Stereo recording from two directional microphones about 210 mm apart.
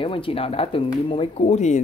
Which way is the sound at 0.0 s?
25° left (ahead or behind).